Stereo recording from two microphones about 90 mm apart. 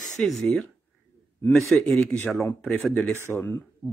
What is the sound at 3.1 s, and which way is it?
Speech, 30° left (ahead or behind).